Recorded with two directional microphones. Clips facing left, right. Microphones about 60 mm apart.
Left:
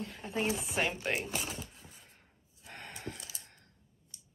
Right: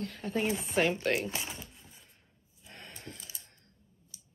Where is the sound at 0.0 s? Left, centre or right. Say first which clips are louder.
Right 2 dB; centre.